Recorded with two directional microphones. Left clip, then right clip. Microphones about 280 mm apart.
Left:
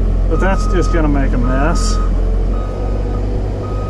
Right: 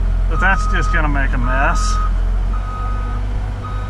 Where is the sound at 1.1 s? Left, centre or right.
Centre.